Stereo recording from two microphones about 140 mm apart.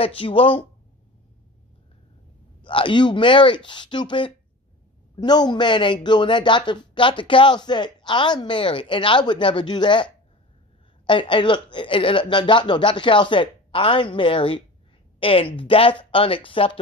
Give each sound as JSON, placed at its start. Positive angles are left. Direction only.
{"t": 0.0, "sound": "speech", "side_deg": 40}
{"t": 2.6, "sound": "speech", "side_deg": 35}
{"t": 11.1, "sound": "speech", "side_deg": 35}